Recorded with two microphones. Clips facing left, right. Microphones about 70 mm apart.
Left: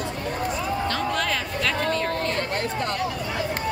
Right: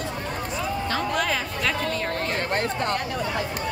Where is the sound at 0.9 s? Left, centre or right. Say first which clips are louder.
Even; centre.